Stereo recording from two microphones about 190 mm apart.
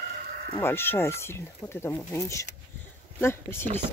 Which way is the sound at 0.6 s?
10° left (ahead or behind).